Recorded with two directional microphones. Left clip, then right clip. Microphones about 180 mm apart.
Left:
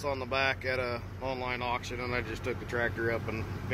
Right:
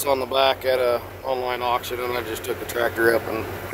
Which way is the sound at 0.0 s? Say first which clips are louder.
Right 11 dB; 20° right (ahead or behind).